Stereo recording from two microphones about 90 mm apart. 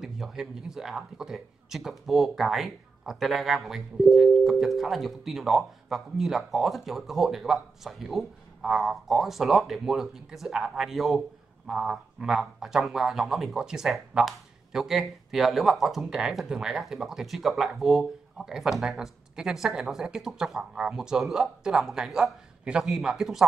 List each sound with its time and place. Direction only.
0.0 s speech: 5° right (ahead or behind)